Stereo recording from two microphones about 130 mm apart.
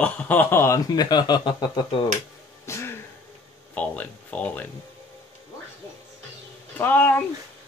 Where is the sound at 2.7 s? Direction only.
20° left (ahead or behind).